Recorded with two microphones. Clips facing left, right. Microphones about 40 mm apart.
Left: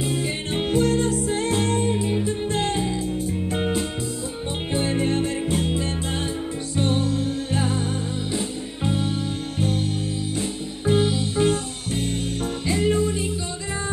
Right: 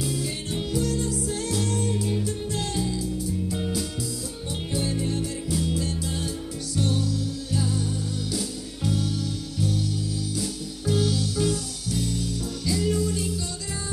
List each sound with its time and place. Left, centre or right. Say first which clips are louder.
0.0 s music: left 4 dB; left